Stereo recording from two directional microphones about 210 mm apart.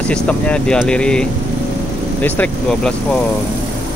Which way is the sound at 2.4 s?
5° left (ahead or behind).